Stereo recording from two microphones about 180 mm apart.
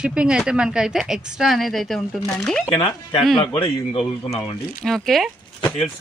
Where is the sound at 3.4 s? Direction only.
30° left (ahead or behind).